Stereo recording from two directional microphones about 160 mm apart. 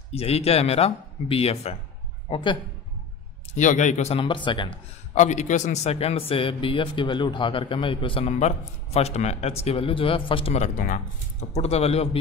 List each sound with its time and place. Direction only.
0.1 s a man's voice: 40° left (ahead or behind)
3.5 s a man's voice: 50° left (ahead or behind); by 4.7 s 30° left (ahead or behind)
5.1 s a man's voice: 50° left (ahead or behind)